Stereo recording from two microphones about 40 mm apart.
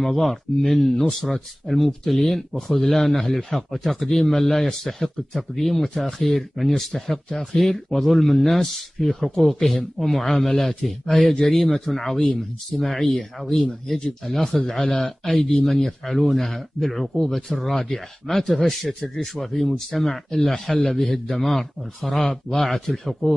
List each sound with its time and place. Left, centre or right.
0.0 s a man's voice: centre
18.9 s speech: centre
19.4 s a man's voice: centre